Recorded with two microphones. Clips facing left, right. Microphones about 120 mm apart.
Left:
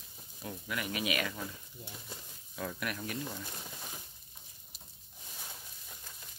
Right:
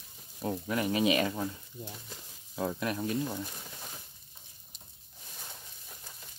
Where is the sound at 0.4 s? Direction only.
35° right (ahead or behind).